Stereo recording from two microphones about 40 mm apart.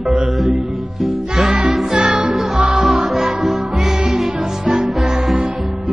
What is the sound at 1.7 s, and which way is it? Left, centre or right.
Music, centre.